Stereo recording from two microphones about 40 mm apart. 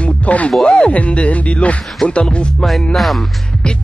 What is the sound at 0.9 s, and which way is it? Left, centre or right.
Speech, left.